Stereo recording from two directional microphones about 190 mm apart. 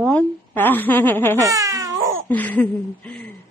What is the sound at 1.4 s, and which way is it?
Baby cry, 15° right (ahead or behind).